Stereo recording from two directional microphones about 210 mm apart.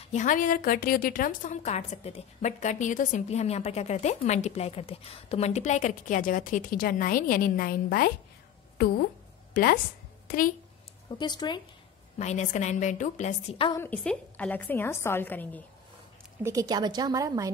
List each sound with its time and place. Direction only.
0.1 s a woman's voice: 40° left (ahead or behind)
11.1 s speech: 20° left (ahead or behind)
12.2 s a woman's voice: 30° left (ahead or behind)
13.7 s a woman's voice: 10° left (ahead or behind)
16.4 s a woman's voice: 15° right (ahead or behind)